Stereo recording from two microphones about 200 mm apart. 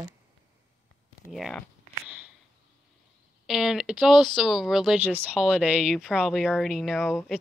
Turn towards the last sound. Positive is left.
turn(degrees=0)  # may be behind; listen again after turning